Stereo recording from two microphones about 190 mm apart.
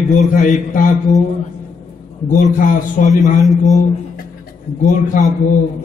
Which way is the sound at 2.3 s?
40° left (ahead or behind).